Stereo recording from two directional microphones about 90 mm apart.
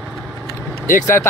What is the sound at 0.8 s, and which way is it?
Speech, 25° left (ahead or behind).